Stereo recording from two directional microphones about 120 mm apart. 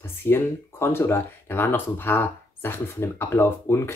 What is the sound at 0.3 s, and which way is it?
Speech, 20° left (ahead or behind).